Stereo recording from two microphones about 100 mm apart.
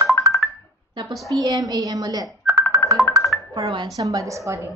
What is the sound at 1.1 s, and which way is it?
Speech, centre (ahead or behind).